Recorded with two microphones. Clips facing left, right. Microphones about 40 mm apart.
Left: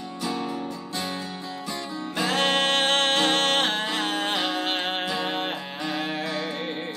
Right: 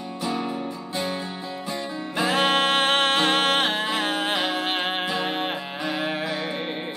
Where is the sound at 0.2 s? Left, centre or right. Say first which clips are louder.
Right 2 dB; centre.